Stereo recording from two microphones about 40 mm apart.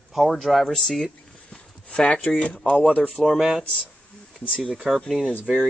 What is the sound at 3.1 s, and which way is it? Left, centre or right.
Speech, centre.